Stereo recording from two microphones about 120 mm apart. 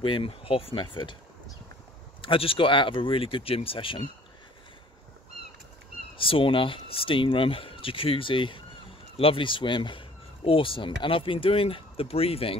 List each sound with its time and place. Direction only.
0.0 s speech: 45° left (ahead or behind)
2.2 s speech: 50° left (ahead or behind)
6.1 s speech: 50° left (ahead or behind)